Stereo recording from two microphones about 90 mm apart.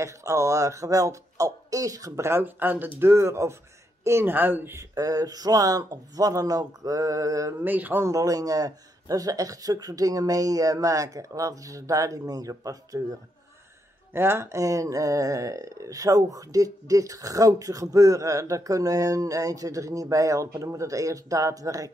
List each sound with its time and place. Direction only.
0.0 s speech: 35° right (ahead or behind)
4.9 s speech: 40° right (ahead or behind)
7.6 s speech: 20° right (ahead or behind)
8.0 s speech: 40° right (ahead or behind)
14.1 s speech: 25° right (ahead or behind)